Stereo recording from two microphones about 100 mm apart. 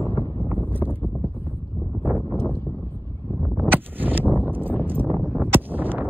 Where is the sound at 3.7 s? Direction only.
20° right (ahead or behind).